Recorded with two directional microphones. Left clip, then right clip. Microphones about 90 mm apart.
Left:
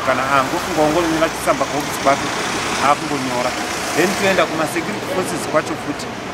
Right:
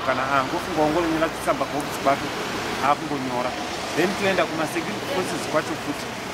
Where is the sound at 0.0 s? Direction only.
Centre (ahead or behind).